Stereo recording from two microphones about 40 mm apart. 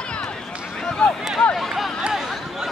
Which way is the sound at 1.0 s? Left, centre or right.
Left.